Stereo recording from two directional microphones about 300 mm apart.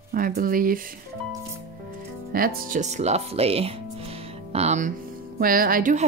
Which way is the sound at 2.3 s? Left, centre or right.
Right.